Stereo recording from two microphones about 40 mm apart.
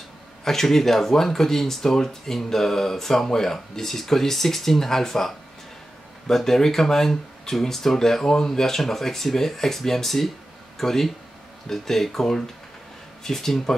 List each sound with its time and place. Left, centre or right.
0.5 s speech: centre